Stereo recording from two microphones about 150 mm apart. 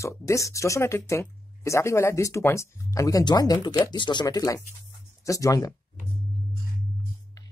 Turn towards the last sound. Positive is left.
turn(degrees=20)  # may be behind; listen again after turning